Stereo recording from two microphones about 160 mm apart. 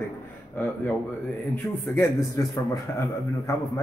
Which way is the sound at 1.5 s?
15° left (ahead or behind).